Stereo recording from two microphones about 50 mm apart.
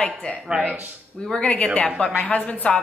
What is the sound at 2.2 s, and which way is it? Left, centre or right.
Speech, left.